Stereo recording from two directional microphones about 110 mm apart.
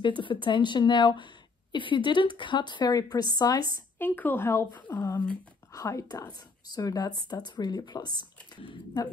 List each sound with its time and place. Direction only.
0.2 s a woman's voice: 50° left (ahead or behind)
4.0 s speech: 20° left (ahead or behind)
5.7 s speech: 30° left (ahead or behind)